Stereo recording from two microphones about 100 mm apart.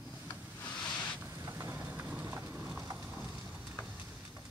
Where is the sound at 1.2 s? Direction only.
25° right (ahead or behind).